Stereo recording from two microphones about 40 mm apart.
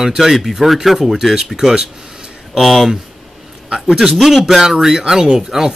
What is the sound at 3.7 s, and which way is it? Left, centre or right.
Speech, right.